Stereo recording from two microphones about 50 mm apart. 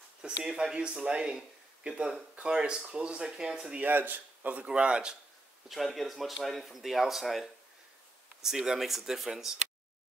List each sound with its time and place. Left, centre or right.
0.2 s speech: centre
3.8 s speech: right
4.6 s a man's voice: centre
5.9 s speech: centre